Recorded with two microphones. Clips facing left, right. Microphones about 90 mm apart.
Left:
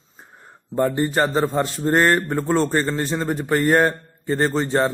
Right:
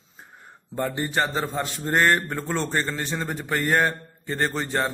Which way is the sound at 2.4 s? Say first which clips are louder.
Left 7 dB; 40° left (ahead or behind).